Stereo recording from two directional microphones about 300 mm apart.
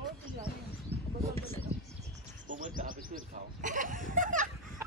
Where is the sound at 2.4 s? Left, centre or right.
Right.